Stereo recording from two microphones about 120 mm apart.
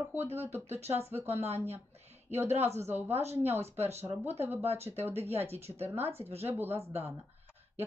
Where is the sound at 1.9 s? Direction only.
65° right (ahead or behind).